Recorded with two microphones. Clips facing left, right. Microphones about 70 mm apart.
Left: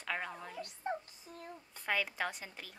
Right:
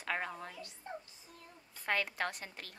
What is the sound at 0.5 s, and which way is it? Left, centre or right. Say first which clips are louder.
Speech: left 8 dB; left.